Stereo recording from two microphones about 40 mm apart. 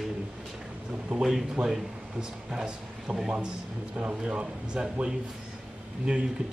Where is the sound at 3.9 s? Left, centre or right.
Right.